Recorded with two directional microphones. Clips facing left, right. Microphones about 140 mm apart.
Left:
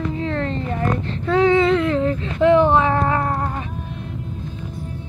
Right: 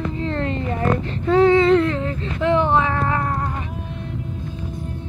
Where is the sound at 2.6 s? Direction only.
15° left (ahead or behind).